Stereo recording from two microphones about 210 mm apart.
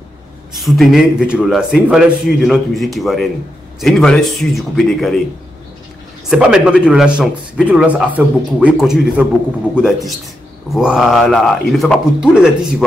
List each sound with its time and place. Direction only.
0.6 s a man's voice: centre (ahead or behind)
6.2 s a man's voice: centre (ahead or behind)